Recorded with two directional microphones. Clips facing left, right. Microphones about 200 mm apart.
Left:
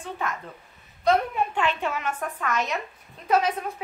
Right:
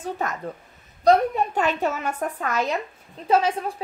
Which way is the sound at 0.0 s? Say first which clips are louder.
Right 4 dB; 40° right (ahead or behind).